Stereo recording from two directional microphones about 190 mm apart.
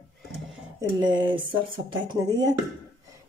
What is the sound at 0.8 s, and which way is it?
Speech, 25° right (ahead or behind).